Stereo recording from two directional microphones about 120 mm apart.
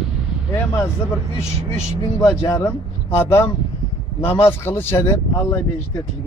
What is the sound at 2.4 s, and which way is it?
Speech, 25° left (ahead or behind).